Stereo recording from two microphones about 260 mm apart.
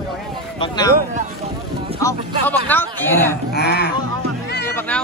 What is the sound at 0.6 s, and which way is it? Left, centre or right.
Speech, centre.